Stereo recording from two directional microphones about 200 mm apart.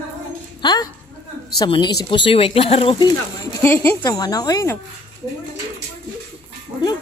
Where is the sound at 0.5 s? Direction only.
20° left (ahead or behind).